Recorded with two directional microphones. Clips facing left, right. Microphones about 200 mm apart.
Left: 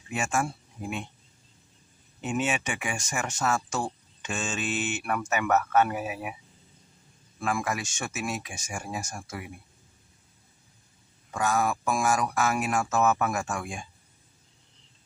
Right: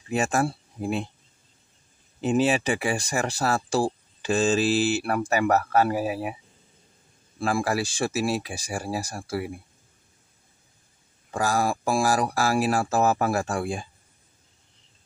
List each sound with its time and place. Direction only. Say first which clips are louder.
0.1 s speech: right 5 dB; 35° right (ahead or behind)
2.2 s speech: right 7 dB; 35° right (ahead or behind)
7.3 s speech: right 5 dB; 30° right (ahead or behind)
11.3 s speech: right 2 dB; 35° right (ahead or behind)